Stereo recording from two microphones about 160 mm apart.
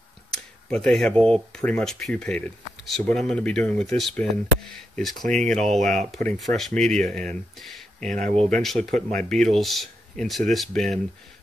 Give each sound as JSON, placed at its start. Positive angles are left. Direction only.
{"t": 0.3, "sound": "speech", "side_deg": 5}
{"t": 5.8, "sound": "speech", "side_deg": -50}
{"t": 6.1, "sound": "speech", "side_deg": 0}
{"t": 8.1, "sound": "speech", "side_deg": -55}
{"t": 8.5, "sound": "speech", "side_deg": 5}